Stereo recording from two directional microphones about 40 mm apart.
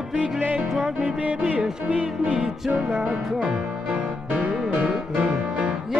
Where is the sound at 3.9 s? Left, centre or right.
Right.